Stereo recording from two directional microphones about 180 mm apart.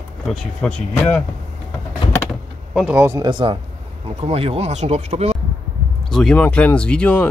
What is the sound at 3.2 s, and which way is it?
A man's voice, 25° right (ahead or behind).